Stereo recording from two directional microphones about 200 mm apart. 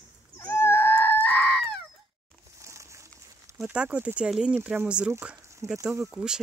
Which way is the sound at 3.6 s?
5° right (ahead or behind).